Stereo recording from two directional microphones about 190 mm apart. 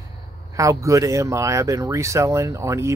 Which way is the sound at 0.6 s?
15° right (ahead or behind).